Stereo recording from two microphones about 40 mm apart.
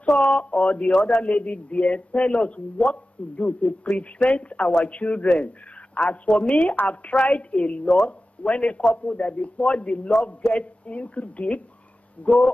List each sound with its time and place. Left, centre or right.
0.0 s speech: left